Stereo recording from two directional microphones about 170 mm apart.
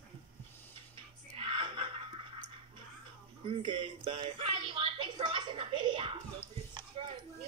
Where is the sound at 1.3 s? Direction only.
30° right (ahead or behind).